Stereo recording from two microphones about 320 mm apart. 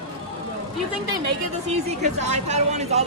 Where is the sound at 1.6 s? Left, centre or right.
Right.